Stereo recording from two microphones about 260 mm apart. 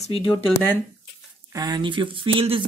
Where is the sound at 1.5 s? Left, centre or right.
Centre.